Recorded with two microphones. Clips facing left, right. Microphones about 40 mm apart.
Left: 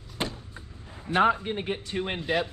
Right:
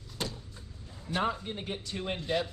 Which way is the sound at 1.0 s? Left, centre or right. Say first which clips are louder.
Left 9 dB; left.